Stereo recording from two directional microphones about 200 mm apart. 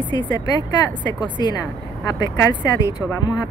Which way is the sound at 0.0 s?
25° left (ahead or behind).